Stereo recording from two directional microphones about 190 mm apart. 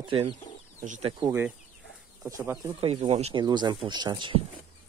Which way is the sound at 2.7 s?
35° right (ahead or behind).